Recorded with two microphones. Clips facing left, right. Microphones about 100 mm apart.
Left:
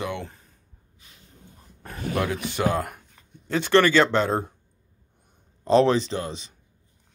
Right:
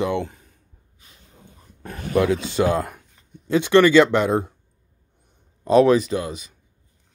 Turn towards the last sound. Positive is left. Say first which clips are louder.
# right 4 dB
turn(degrees=30)  # may be behind; listen again after turning